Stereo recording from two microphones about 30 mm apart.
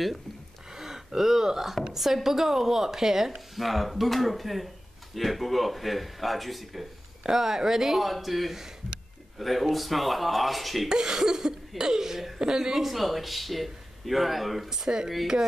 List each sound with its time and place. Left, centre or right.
0.7 s gasp: centre
2.0 s speech: centre
3.5 s speech: centre
7.2 s speech: centre
10.9 s a woman's voice: centre
12.7 s speech: centre